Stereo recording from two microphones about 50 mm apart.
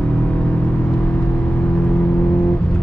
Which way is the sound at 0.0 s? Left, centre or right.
Left.